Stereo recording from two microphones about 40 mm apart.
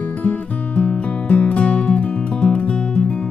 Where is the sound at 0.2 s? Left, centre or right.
Left.